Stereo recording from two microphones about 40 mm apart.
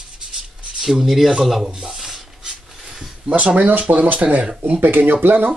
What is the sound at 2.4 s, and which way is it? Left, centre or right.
Mechanisms, right.